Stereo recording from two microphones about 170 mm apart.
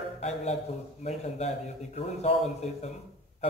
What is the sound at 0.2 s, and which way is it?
A man's voice, 40° left (ahead or behind).